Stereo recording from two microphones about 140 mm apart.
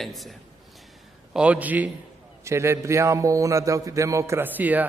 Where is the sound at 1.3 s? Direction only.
10° right (ahead or behind).